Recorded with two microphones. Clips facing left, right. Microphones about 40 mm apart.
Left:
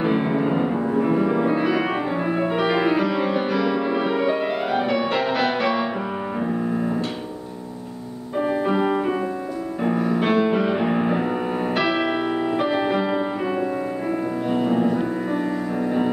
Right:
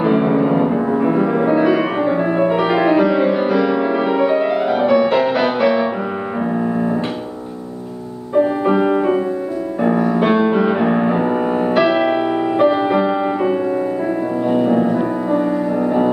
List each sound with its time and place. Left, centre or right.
0.0 s music: centre
8.4 s music: centre